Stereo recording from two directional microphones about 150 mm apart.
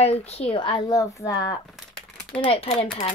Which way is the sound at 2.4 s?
40° left (ahead or behind).